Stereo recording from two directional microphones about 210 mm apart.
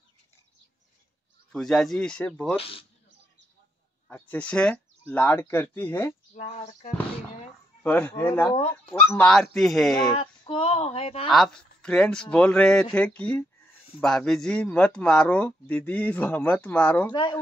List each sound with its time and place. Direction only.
1.5 s speech: centre (ahead or behind)
2.5 s speech: 25° left (ahead or behind)
4.1 s speech: 5° left (ahead or behind)
6.3 s speech: 30° left (ahead or behind)
7.8 s speech: 10° left (ahead or behind)
10.0 s speech: 25° left (ahead or behind)
11.2 s speech: centre (ahead or behind)
17.1 s speech: 20° left (ahead or behind)